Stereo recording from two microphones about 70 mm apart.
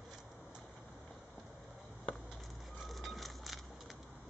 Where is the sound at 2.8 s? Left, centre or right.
Centre.